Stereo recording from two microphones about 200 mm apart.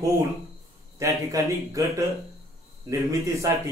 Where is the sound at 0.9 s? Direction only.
15° right (ahead or behind).